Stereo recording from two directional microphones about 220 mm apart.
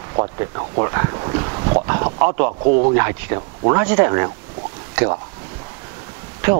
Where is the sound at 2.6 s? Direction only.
35° right (ahead or behind).